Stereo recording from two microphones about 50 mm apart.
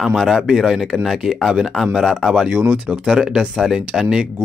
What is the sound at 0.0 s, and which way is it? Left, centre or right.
Speech, centre.